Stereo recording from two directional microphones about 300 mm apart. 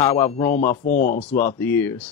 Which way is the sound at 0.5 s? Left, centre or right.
Left.